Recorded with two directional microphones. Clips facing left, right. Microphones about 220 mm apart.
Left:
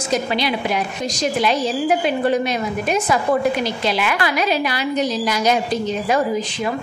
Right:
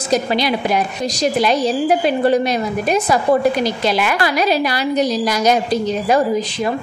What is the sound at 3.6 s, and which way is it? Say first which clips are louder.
A woman's voice: right 3 dB; 45° right (ahead or behind).